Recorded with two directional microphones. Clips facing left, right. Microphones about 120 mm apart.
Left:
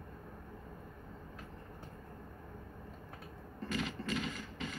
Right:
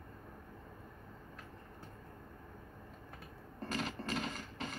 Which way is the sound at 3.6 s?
40° right (ahead or behind).